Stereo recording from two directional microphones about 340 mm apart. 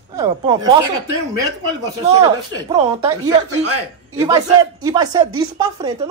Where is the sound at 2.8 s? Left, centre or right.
Centre.